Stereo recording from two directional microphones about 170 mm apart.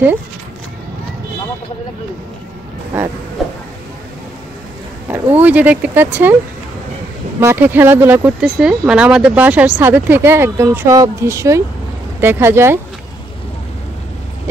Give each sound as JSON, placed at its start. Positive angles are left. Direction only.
{"t": 5.0, "sound": "speech", "side_deg": -10}
{"t": 7.3, "sound": "speech", "side_deg": -10}